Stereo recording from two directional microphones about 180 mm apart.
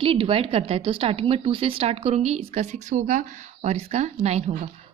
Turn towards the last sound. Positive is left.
turn(degrees=-35)  # may be behind; listen again after turning